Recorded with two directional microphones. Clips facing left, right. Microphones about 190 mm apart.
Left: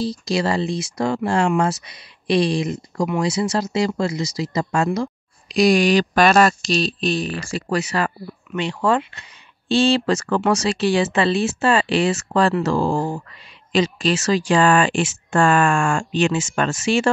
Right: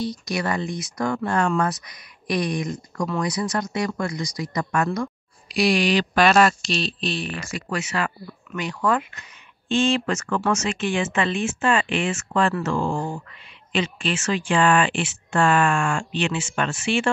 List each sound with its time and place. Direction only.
0.0 s speech: 30° left (ahead or behind)
5.6 s speech: 45° left (ahead or behind)